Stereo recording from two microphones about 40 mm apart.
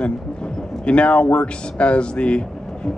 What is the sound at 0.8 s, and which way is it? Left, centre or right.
Speech, left.